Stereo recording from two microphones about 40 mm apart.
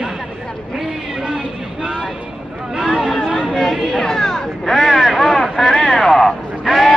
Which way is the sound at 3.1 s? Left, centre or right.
Centre.